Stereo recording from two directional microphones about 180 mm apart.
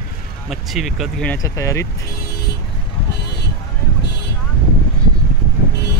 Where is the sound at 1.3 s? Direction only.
15° left (ahead or behind).